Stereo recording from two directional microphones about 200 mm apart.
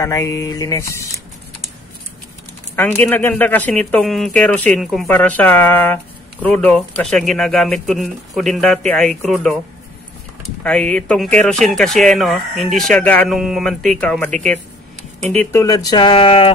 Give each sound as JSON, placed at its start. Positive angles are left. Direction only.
{"t": 0.0, "sound": "speech", "side_deg": 15}
{"t": 2.7, "sound": "speech", "side_deg": 10}
{"t": 10.6, "sound": "speech", "side_deg": 5}